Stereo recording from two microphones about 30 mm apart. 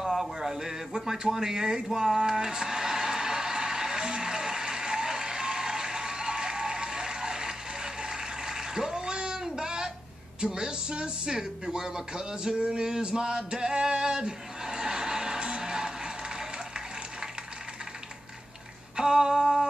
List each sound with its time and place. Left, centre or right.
0.0 s a sound: centre; by 9.4 s right
9.4 s child singing: right
10.4 s speech: right
12.7 s male singing: right
18.9 s speech: right